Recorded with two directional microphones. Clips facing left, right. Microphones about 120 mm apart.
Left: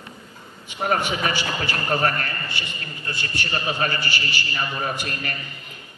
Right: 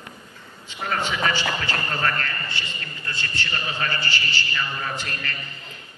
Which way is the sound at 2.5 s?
15° left (ahead or behind).